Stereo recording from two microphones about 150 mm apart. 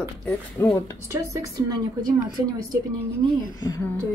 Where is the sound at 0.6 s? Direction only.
20° left (ahead or behind).